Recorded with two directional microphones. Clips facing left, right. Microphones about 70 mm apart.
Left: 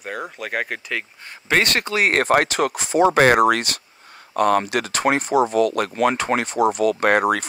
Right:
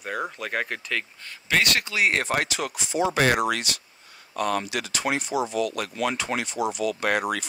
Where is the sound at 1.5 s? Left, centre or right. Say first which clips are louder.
Left 4 dB; left.